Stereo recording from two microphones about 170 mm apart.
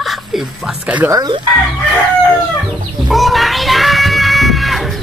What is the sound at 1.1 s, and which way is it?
Speech, 25° right (ahead or behind).